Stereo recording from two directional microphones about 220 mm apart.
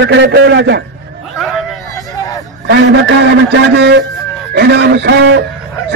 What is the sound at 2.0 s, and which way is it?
Hubbub, 15° left (ahead or behind).